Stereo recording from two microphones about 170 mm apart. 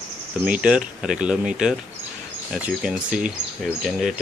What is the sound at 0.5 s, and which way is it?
Speech, 5° right (ahead or behind).